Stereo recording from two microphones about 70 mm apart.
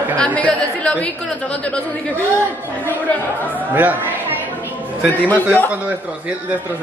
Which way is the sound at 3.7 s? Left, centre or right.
Right.